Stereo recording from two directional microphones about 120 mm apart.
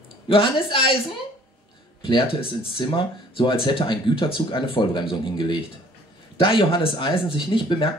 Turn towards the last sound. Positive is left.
turn(degrees=45)  # may be behind; listen again after turning